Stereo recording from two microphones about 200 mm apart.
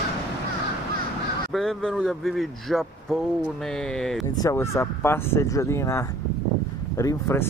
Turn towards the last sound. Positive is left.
turn(degrees=15)  # may be behind; listen again after turning